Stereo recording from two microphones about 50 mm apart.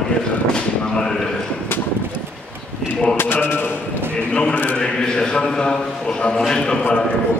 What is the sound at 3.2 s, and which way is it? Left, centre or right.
Speech, left.